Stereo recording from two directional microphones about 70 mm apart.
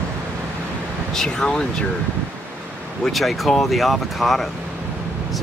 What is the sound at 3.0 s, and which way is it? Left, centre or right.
Speech, centre.